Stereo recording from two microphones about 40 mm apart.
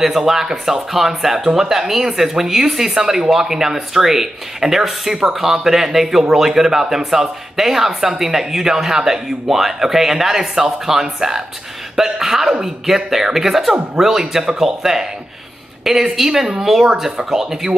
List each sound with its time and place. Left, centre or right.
0.0 s a man's voice: centre
14.6 s a man's voice: centre